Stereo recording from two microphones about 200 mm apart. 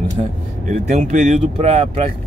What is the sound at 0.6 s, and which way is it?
Speech, 40° right (ahead or behind).